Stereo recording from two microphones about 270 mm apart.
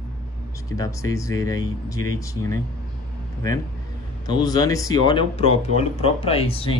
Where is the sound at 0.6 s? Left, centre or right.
Centre.